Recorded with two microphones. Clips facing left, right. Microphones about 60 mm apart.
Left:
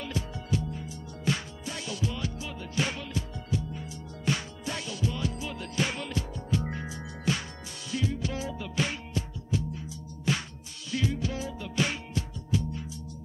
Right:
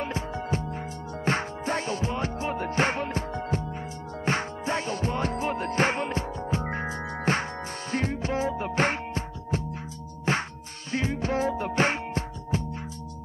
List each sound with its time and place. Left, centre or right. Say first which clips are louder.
0.0 s music: right 5 dB; right